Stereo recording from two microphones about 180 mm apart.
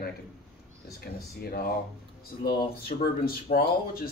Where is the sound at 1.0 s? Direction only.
60° left (ahead or behind).